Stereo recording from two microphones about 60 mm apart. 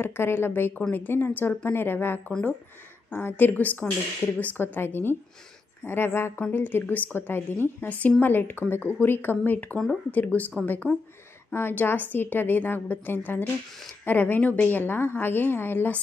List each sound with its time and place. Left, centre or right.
0.0 s a woman's voice: left
14.8 s a woman's voice: left